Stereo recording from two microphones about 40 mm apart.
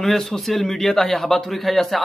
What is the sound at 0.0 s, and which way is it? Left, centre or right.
A man's voice, centre.